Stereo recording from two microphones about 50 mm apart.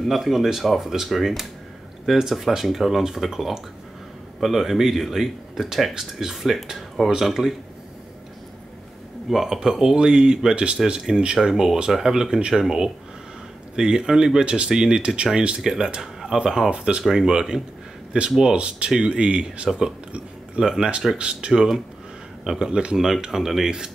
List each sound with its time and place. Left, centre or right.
0.1 s speech: centre
9.3 s speech: centre
16.0 s a sound: centre
16.3 s speech: centre
17.0 s speech: centre
20.6 s speech: centre